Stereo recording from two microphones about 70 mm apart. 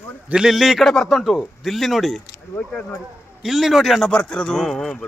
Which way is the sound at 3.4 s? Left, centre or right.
Centre.